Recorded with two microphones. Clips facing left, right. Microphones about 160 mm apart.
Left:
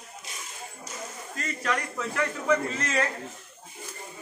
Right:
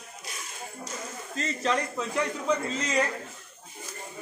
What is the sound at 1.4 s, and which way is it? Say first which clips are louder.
A man's voice: right 3 dB; 25° right (ahead or behind).